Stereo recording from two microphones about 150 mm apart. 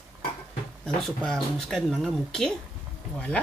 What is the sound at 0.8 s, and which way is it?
Speech, 5° left (ahead or behind).